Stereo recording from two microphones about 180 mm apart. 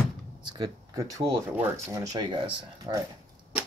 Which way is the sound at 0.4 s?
25° right (ahead or behind).